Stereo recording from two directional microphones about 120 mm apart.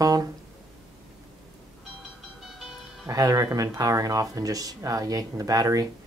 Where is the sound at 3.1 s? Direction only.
30° right (ahead or behind).